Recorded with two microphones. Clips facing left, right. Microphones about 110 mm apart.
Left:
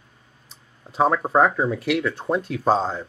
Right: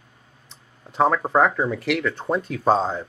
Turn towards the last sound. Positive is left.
turn(degrees=0)  # may be behind; listen again after turning